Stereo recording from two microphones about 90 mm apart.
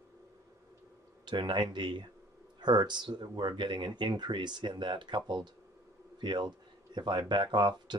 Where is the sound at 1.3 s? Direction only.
60° right (ahead or behind).